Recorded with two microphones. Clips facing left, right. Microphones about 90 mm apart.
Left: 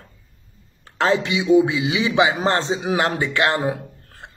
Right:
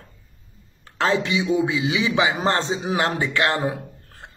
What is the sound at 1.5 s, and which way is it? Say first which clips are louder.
Speech: left 8 dB; 50° left (ahead or behind).